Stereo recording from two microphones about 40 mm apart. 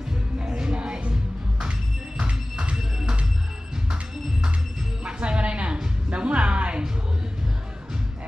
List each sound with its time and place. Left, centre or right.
0.4 s music: right
5.0 s music: right